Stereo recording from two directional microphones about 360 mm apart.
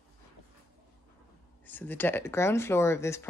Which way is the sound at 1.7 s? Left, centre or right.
Centre.